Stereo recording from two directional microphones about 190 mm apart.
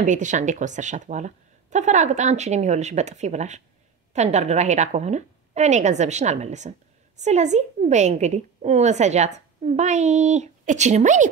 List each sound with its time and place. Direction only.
0.0 s a woman's voice: 40° right (ahead or behind)